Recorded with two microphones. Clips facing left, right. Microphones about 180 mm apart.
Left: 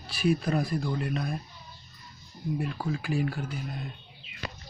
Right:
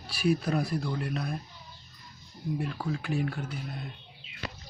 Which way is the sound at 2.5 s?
5° left (ahead or behind).